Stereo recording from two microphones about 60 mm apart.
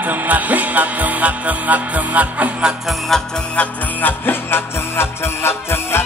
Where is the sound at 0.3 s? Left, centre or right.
Right.